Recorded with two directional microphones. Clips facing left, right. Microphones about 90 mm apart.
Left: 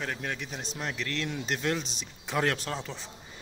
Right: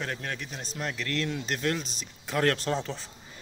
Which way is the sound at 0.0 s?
5° left (ahead or behind).